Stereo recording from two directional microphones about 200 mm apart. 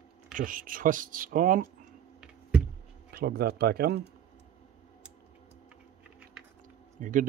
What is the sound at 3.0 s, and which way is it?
Speech, 50° right (ahead or behind).